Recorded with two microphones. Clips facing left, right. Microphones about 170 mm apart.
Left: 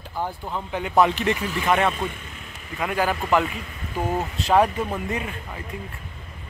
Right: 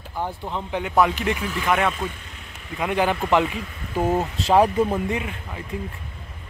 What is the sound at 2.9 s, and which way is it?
A man's voice, 20° right (ahead or behind).